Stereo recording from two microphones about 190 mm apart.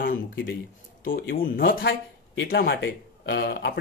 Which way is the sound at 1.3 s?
50° left (ahead or behind).